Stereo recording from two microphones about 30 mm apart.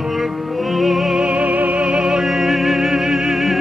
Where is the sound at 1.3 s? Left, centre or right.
Right.